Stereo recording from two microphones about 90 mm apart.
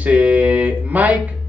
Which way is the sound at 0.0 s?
15° right (ahead or behind).